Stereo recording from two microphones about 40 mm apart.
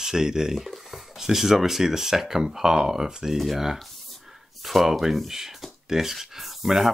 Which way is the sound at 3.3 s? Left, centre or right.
Centre.